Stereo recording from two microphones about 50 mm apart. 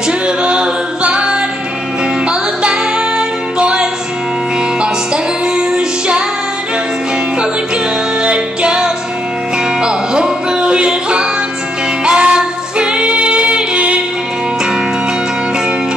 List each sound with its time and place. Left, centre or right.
0.4 s music: right
5.1 s music: centre
8.2 s music: centre